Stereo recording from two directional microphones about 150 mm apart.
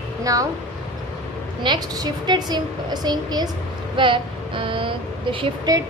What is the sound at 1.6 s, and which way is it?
A woman's voice, 30° right (ahead or behind).